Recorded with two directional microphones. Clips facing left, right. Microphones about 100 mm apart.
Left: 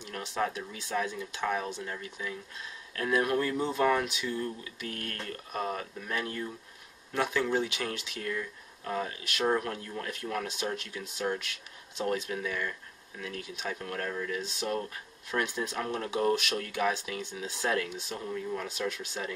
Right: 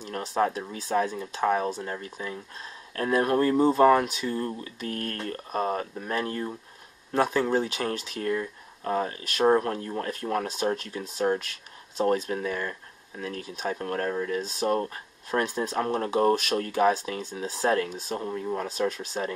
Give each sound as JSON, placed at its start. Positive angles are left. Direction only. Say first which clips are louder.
{"t": 0.0, "sound": "speech", "louder": "right 6 dB", "side_deg": -40}